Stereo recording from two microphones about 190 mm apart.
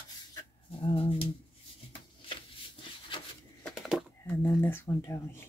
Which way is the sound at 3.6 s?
Centre (ahead or behind).